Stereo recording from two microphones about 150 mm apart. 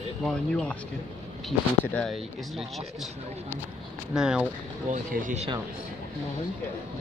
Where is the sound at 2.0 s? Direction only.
Centre (ahead or behind).